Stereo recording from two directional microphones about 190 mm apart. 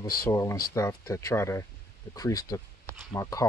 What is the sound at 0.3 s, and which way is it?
Speech, 15° left (ahead or behind).